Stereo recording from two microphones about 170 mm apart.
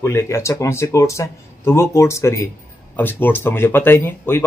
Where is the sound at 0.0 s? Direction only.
15° left (ahead or behind).